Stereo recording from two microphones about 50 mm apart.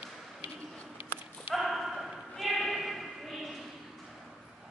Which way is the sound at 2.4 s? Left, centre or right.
Centre.